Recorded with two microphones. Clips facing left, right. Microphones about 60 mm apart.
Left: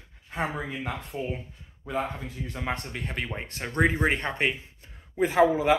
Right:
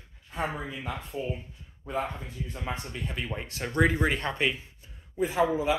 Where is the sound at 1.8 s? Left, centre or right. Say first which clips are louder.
Left 2 dB; left.